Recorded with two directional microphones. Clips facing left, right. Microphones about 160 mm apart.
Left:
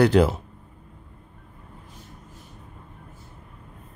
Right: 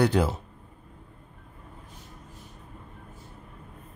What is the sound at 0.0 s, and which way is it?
Speech, 75° left (ahead or behind).